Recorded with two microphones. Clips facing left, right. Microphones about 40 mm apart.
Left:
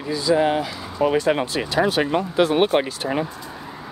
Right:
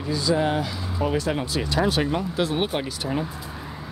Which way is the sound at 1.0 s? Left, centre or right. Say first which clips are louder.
Left 6 dB; left.